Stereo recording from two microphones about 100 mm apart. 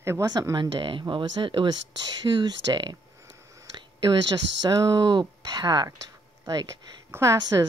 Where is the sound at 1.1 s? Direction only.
55° right (ahead or behind).